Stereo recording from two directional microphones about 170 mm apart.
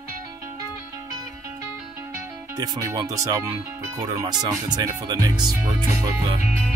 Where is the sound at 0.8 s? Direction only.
20° right (ahead or behind).